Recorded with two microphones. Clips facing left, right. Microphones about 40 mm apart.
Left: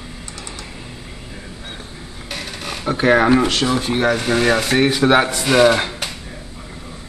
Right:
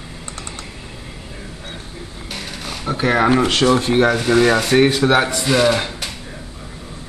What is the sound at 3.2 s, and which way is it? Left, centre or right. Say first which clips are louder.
Speech: right 1 dB; centre.